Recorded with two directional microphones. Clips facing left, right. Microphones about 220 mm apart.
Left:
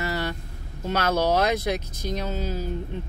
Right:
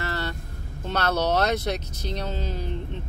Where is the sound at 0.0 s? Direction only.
15° left (ahead or behind).